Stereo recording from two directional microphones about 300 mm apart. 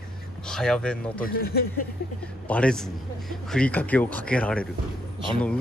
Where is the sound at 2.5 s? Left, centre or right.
Centre.